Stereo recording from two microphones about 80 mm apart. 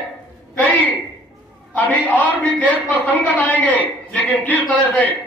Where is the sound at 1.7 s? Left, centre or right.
Left.